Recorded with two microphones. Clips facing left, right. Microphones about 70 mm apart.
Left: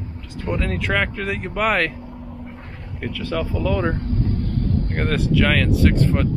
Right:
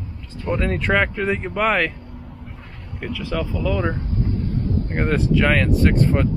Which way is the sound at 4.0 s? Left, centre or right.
Left.